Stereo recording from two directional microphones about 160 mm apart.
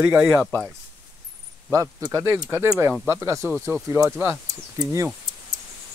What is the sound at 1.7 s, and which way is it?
Speech, 20° right (ahead or behind).